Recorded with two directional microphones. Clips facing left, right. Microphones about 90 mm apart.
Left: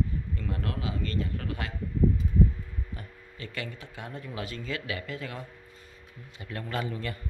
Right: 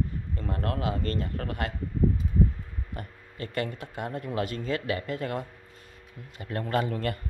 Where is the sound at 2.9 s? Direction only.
50° right (ahead or behind).